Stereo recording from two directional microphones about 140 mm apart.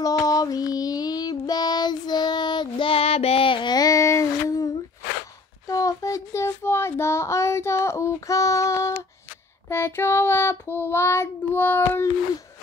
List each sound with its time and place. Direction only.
0.0 s child singing: 25° left (ahead or behind)
5.7 s child singing: 25° left (ahead or behind)